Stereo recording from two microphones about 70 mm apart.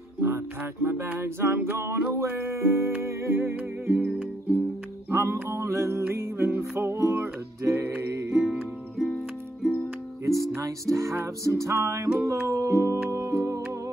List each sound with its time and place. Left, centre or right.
0.2 s music: right
4.0 s music: right
5.1 s music: right
8.4 s music: centre
10.2 s music: right